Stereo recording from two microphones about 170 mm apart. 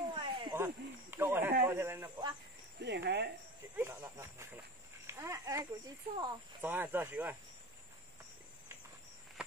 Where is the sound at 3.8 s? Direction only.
15° right (ahead or behind).